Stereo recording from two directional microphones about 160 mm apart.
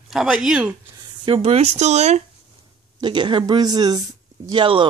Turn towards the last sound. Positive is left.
turn(degrees=-30)  # may be behind; listen again after turning